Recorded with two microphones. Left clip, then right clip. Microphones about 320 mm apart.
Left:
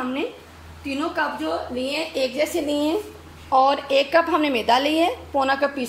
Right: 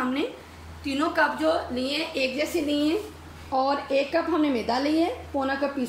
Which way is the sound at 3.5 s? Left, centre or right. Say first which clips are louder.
Left 7 dB; left.